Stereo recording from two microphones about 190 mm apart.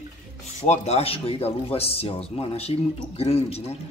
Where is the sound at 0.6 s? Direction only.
35° left (ahead or behind).